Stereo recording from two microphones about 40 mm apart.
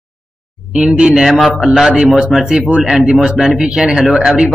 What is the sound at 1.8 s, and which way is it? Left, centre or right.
Speech, right.